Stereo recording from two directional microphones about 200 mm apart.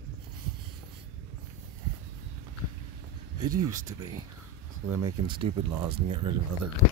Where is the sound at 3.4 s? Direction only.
15° right (ahead or behind).